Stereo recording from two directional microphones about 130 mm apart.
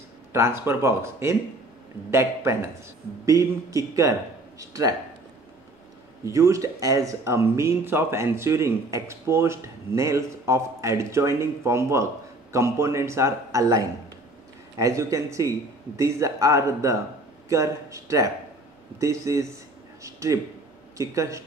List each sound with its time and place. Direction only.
0.3 s speech: 20° right (ahead or behind)
6.2 s speech: 25° right (ahead or behind)
20.0 s a sound: 25° right (ahead or behind)
21.0 s speech: 25° right (ahead or behind)